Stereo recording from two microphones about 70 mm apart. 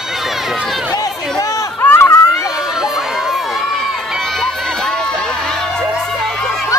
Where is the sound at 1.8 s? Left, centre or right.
Left.